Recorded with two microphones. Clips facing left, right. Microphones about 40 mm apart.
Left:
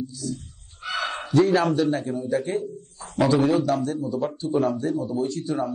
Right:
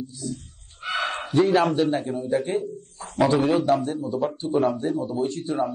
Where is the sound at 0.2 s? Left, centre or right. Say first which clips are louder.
Even; right.